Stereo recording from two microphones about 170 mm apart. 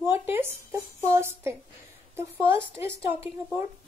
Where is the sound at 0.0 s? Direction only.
15° right (ahead or behind).